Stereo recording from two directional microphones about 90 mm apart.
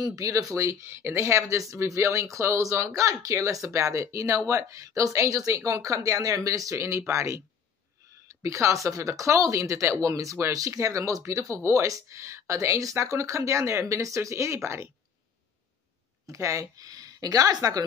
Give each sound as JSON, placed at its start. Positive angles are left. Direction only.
{"t": 0.0, "sound": "speech", "side_deg": -40}
{"t": 16.3, "sound": "speech", "side_deg": -35}